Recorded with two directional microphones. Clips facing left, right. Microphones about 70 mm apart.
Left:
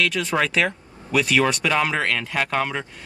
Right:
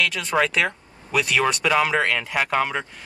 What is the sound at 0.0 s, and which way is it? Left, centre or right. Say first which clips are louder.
Speech: even; centre.